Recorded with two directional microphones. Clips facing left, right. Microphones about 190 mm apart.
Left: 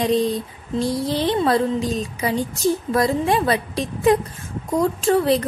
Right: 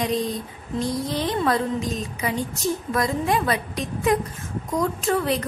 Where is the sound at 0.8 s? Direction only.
30° left (ahead or behind).